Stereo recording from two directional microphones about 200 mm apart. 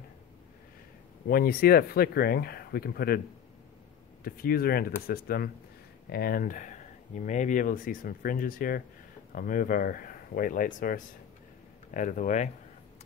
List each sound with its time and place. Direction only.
1.3 s speech: 50° left (ahead or behind)
4.2 s speech: 50° left (ahead or behind)